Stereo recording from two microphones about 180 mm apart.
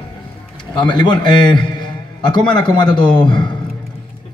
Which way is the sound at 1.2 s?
25° left (ahead or behind).